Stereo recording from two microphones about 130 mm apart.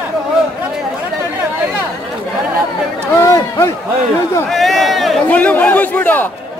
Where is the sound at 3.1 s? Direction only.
25° left (ahead or behind).